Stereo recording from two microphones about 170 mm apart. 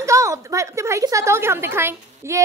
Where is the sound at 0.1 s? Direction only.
15° right (ahead or behind).